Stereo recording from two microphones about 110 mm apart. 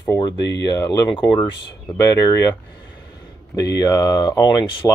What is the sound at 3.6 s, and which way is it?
Speech, 30° left (ahead or behind).